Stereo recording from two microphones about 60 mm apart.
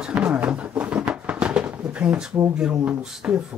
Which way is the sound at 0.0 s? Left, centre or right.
Centre.